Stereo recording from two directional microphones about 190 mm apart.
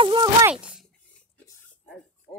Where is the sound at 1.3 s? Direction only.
10° left (ahead or behind).